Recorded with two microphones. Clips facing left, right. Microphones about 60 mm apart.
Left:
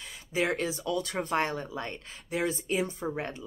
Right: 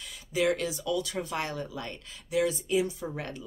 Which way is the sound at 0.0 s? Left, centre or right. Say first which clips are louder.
Right 2 dB; left.